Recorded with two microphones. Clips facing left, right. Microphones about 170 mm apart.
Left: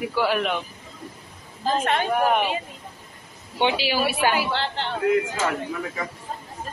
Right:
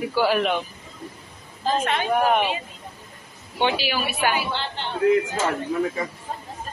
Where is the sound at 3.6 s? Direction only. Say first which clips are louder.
Left 1 dB; 25° left (ahead or behind).